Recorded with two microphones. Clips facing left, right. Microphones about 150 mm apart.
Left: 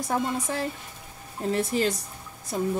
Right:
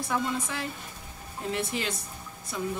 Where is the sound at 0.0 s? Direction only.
40° left (ahead or behind).